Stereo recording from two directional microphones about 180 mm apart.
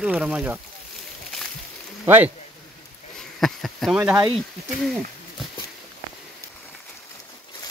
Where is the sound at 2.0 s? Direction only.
10° right (ahead or behind).